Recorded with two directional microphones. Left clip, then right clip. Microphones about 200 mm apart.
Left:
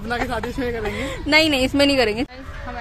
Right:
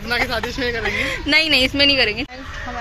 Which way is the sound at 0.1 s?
55° left (ahead or behind).